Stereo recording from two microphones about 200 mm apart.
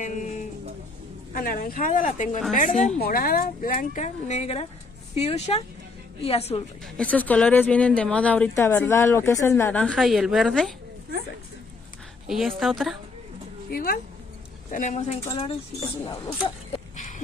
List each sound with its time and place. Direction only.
0.0 s speech: 40° left (ahead or behind)
1.3 s speech: 45° left (ahead or behind); by 6.6 s 30° left (ahead or behind)
7.0 s speech: 5° left (ahead or behind)
12.3 s a woman's voice: centre (ahead or behind)
13.7 s speech: 50° left (ahead or behind)
14.7 s speech: 35° left (ahead or behind)
15.2 s speech: 25° left (ahead or behind)
16.4 s a sound: 35° left (ahead or behind)